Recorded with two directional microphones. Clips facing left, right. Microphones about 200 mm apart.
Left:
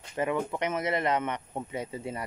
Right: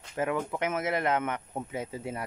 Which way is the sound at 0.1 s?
Centre (ahead or behind).